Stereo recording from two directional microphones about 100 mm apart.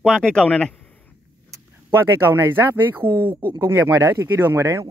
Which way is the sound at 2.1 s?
25° right (ahead or behind).